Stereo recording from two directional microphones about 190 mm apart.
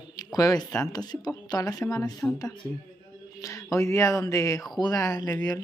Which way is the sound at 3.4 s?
15° left (ahead or behind).